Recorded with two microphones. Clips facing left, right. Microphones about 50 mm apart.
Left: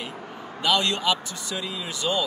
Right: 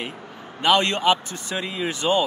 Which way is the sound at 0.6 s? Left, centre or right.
Right.